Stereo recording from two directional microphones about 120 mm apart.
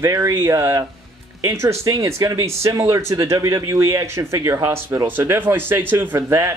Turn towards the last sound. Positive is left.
turn(degrees=-20)  # may be behind; listen again after turning